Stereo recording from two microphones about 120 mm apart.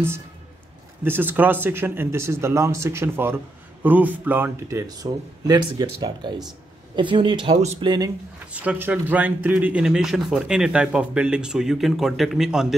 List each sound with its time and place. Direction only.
1.0 s speech: 15° right (ahead or behind); by 8.1 s 35° right (ahead or behind)
8.5 s speech: 10° right (ahead or behind)